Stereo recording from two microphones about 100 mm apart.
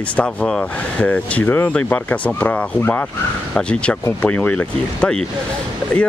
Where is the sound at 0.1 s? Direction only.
10° left (ahead or behind).